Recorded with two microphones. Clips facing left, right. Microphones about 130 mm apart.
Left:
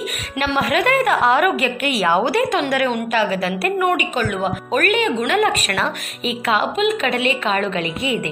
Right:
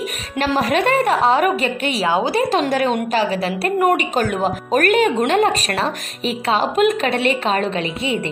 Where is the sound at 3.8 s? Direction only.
40° right (ahead or behind).